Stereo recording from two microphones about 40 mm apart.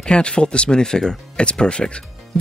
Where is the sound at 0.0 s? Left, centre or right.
Left.